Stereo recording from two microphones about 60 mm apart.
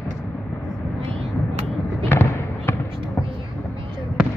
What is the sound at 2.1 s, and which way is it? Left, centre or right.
Fireworks, left.